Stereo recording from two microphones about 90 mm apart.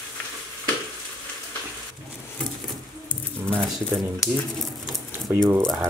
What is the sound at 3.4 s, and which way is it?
Speech, 20° right (ahead or behind).